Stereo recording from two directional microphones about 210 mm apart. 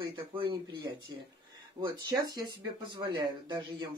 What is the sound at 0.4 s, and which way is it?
Speech, 20° right (ahead or behind).